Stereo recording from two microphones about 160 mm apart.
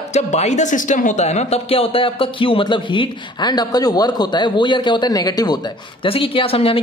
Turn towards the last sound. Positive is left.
turn(degrees=35)  # may be behind; listen again after turning